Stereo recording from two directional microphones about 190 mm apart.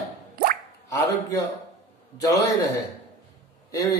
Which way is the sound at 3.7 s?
20° left (ahead or behind).